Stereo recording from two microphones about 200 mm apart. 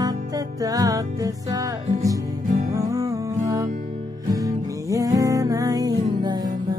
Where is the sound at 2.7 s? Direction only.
15° right (ahead or behind).